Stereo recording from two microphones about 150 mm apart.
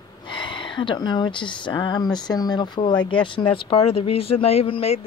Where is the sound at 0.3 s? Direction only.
30° left (ahead or behind).